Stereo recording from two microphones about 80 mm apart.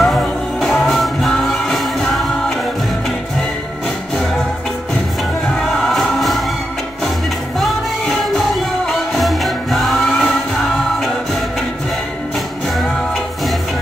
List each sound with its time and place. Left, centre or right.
0.0 s music: centre
5.6 s music: centre
7.6 s music: centre